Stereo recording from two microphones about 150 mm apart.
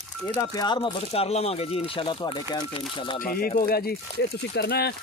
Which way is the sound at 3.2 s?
70° left (ahead or behind).